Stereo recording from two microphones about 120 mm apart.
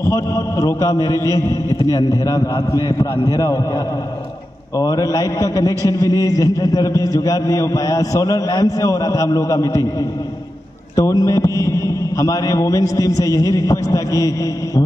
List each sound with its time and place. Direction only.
0.0 s a man's voice: 25° left (ahead or behind)
4.7 s a man's voice: 30° left (ahead or behind)
11.0 s a man's voice: 25° left (ahead or behind)